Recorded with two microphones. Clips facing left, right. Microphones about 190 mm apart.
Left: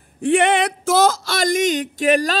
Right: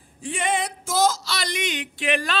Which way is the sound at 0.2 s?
65° left (ahead or behind).